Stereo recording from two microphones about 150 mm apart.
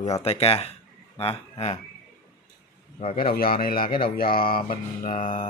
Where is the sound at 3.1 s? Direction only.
80° left.